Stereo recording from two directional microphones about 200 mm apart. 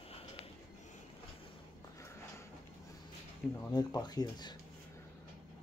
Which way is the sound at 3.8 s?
20° left (ahead or behind).